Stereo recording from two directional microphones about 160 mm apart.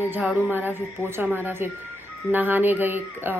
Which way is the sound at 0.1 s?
10° right (ahead or behind).